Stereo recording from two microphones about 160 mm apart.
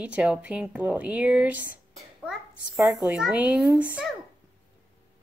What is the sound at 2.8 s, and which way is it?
Speech, centre (ahead or behind).